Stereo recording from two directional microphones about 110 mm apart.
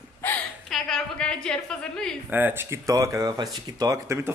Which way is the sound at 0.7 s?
5° left (ahead or behind).